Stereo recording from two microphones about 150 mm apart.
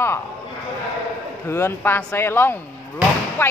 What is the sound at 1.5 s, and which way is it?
Speech, 15° left (ahead or behind).